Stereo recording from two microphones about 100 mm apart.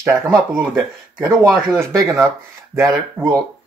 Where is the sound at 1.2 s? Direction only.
25° right (ahead or behind).